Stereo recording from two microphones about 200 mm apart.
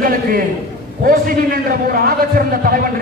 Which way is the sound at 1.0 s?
45° right (ahead or behind).